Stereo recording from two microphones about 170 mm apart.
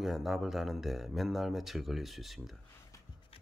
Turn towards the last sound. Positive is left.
turn(degrees=35)  # may be behind; listen again after turning